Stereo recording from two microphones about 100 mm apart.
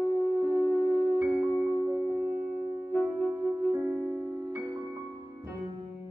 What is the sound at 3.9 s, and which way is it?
Music, 10° right (ahead or behind).